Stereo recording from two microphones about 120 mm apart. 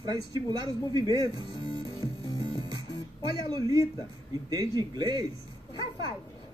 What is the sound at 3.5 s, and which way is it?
A man's voice, 30° right (ahead or behind).